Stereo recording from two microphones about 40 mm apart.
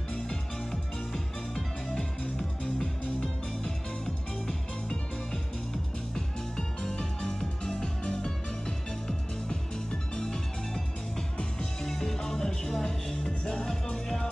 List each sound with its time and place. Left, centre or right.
0.1 s music: centre
6.1 s music: centre
11.8 s music: centre